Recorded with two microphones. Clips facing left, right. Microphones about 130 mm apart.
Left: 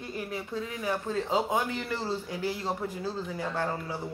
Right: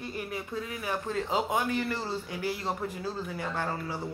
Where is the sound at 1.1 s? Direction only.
15° left (ahead or behind).